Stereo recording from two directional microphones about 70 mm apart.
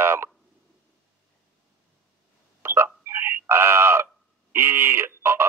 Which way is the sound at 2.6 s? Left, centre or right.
Right.